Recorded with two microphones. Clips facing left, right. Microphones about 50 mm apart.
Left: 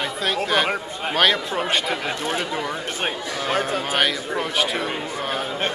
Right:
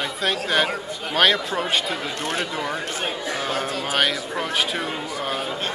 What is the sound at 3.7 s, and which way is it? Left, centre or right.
Speech, left.